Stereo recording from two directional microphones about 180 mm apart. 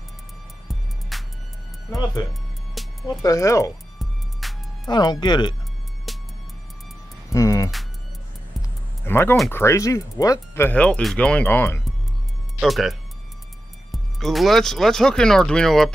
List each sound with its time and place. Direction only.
1.1 s music: centre (ahead or behind)
1.9 s speech: 20° left (ahead or behind)
2.7 s music: centre (ahead or behind)
3.2 s speech: 20° left (ahead or behind)
4.0 s music: centre (ahead or behind)
4.8 s speech: 25° left (ahead or behind)
6.1 s music: centre (ahead or behind)
7.2 s music: 15° left (ahead or behind)
9.0 s speech: 10° left (ahead or behind)
12.5 s speech: centre (ahead or behind)
13.9 s speech: centre (ahead or behind)